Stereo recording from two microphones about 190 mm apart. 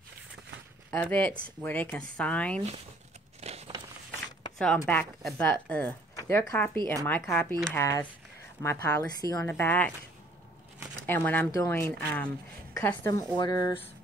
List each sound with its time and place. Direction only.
0.9 s a woman's voice: 10° left (ahead or behind)
3.3 s a sound: 35° right (ahead or behind)
4.7 s a woman's voice: 10° left (ahead or behind)
11.1 s a woman's voice: 10° left (ahead or behind)